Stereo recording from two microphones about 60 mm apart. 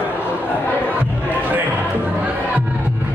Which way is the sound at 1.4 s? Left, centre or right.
Right.